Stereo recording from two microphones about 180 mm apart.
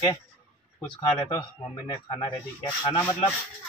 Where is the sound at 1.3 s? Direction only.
25° left (ahead or behind).